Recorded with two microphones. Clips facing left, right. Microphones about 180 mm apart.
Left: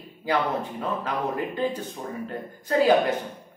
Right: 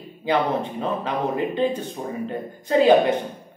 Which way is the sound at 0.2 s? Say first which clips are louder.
Right 4 dB; 20° right (ahead or behind).